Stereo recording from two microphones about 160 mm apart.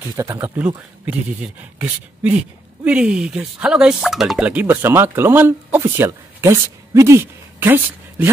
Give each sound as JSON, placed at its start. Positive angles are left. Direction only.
{"t": 0.1, "sound": "speech", "side_deg": -20}